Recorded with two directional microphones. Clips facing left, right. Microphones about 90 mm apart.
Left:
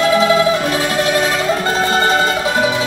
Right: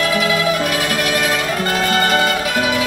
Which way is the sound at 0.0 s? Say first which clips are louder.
Left 5 dB; 30° left (ahead or behind).